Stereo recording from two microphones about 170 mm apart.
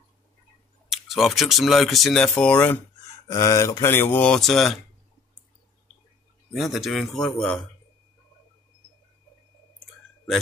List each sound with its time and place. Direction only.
0.8 s speech: centre (ahead or behind)
6.5 s speech: centre (ahead or behind)